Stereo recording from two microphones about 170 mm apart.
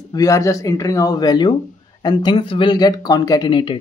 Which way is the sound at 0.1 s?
20° left (ahead or behind).